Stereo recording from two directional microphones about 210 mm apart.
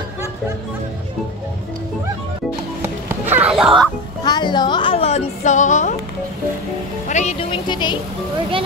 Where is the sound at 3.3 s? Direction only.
5° right (ahead or behind).